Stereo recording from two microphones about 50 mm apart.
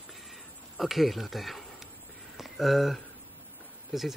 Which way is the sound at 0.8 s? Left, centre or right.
Centre.